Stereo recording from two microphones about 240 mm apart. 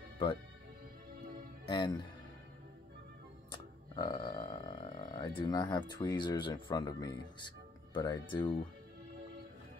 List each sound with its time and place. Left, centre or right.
1.7 s speech: centre
3.9 s a sound: centre
5.4 s speech: centre